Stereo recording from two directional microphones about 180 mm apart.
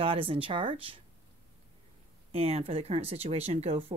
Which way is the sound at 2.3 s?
35° right (ahead or behind).